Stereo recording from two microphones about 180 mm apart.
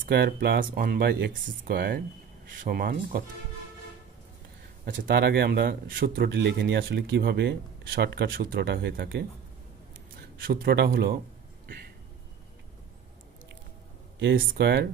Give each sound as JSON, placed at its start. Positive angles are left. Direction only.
{"t": 0.0, "sound": "speech", "side_deg": -65}
{"t": 1.3, "sound": "speech", "side_deg": -50}
{"t": 4.8, "sound": "speech", "side_deg": -55}
{"t": 10.4, "sound": "speech", "side_deg": -55}
{"t": 14.3, "sound": "speech", "side_deg": -55}